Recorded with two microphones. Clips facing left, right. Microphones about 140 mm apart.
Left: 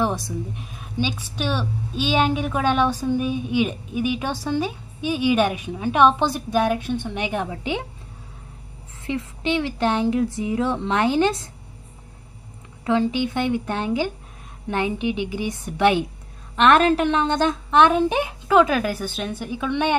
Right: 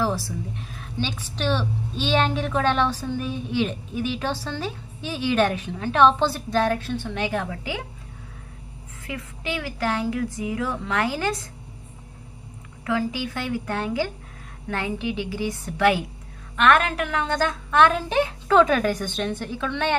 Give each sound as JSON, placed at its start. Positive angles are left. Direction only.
{"t": 0.0, "sound": "a woman's voice", "side_deg": 20}
{"t": 9.0, "sound": "speech", "side_deg": 25}
{"t": 12.8, "sound": "a woman's voice", "side_deg": 25}